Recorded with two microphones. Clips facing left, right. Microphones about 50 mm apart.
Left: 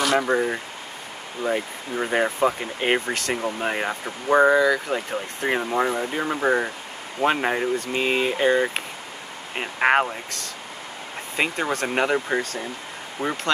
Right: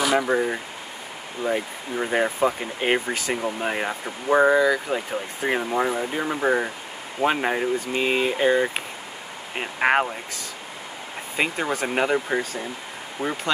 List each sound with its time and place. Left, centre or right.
0.0 s speech: centre